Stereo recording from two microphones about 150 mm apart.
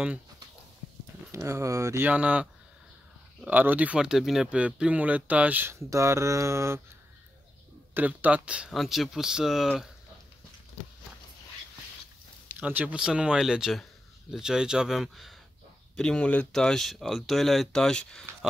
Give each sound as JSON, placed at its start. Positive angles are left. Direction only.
{"t": 1.3, "sound": "speech", "side_deg": -20}
{"t": 3.4, "sound": "speech", "side_deg": -10}
{"t": 7.9, "sound": "speech", "side_deg": -10}
{"t": 12.5, "sound": "speech", "side_deg": -10}